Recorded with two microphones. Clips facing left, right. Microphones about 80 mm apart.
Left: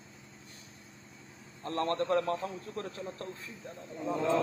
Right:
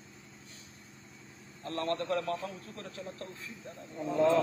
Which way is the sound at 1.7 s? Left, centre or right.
Left.